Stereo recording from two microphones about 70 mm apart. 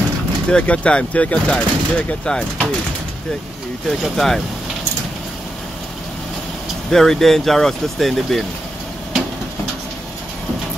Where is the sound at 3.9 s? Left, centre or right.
Centre.